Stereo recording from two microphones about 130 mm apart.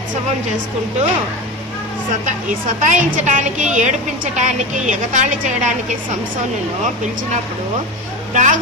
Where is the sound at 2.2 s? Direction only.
80° right.